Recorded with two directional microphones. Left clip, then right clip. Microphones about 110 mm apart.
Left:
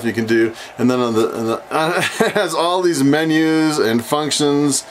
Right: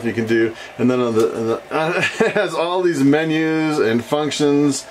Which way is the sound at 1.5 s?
40° left (ahead or behind).